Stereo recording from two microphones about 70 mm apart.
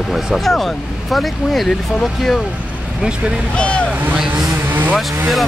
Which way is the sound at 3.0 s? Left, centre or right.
Centre.